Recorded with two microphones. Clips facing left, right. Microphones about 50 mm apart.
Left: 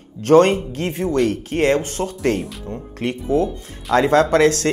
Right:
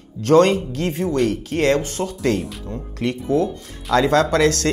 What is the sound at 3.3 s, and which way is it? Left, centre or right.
Speech, left.